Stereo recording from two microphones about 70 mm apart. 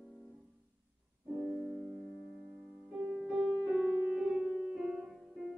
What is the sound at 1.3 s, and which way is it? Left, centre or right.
Keyboard, centre.